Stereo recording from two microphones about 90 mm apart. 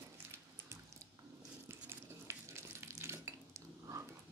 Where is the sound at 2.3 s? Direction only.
30° right (ahead or behind).